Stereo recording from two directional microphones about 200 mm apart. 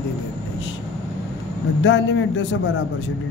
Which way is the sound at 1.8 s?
65° left (ahead or behind).